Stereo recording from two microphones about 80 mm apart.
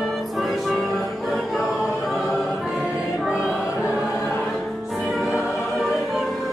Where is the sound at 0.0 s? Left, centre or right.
Centre.